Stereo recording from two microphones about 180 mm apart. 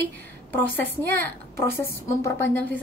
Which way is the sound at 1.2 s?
15° left (ahead or behind).